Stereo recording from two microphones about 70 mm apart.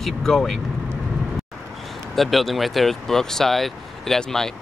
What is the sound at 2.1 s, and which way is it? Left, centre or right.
Speech, centre.